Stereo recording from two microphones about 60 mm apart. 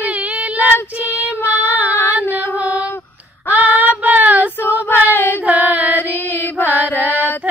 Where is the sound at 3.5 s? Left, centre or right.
Right.